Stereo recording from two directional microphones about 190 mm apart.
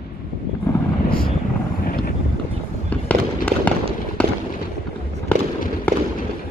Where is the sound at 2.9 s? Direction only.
5° left (ahead or behind).